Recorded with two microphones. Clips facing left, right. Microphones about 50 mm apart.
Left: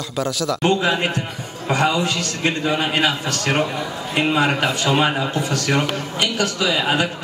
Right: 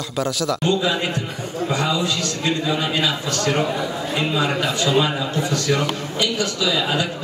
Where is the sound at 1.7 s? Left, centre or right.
Left.